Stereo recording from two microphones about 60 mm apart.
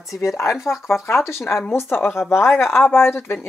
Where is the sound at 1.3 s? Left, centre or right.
Centre.